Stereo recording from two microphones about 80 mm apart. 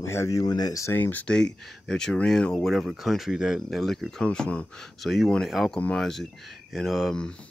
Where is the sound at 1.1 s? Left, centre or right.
Centre.